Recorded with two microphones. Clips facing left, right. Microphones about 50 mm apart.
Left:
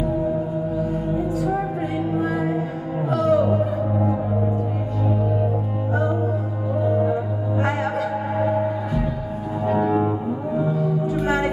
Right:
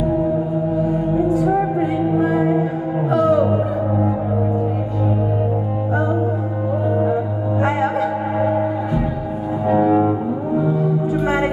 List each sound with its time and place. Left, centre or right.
1.8 s music: right
8.4 s music: centre
10.8 s music: right